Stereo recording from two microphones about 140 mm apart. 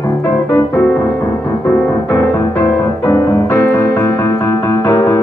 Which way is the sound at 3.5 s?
15° left (ahead or behind).